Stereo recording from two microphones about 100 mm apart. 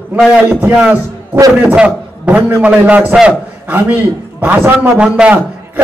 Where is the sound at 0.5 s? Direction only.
20° right (ahead or behind).